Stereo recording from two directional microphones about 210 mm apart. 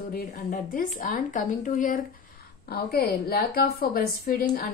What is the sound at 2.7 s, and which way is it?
A woman's voice, 50° left (ahead or behind).